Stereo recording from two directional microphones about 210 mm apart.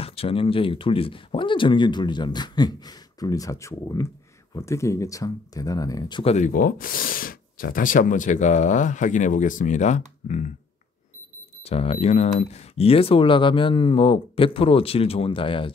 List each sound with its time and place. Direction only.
0.0 s speech: 25° left (ahead or behind)
11.6 s speech: 30° left (ahead or behind)